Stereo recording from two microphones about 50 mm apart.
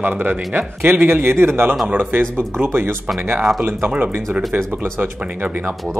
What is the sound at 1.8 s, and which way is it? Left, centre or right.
A man's voice, right.